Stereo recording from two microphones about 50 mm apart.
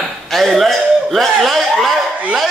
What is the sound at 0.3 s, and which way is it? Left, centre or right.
Chuckle, centre.